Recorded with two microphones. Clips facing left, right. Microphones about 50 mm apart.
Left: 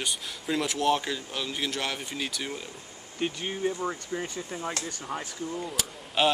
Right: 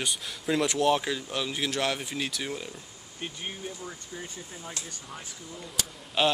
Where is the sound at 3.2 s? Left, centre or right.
Left.